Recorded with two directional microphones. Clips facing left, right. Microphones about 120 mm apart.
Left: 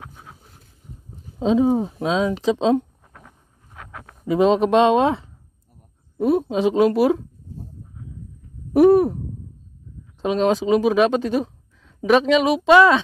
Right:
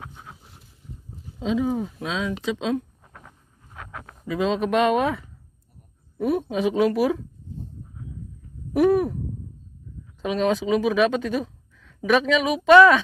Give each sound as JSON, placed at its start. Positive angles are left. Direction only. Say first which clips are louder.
{"t": 1.4, "sound": "speech", "louder": "left 6 dB", "side_deg": 30}
{"t": 4.3, "sound": "speech", "louder": "left 7 dB", "side_deg": 30}
{"t": 8.9, "sound": "sigh", "louder": "left 5 dB", "side_deg": 35}
{"t": 10.2, "sound": "speech", "louder": "left 4 dB", "side_deg": 30}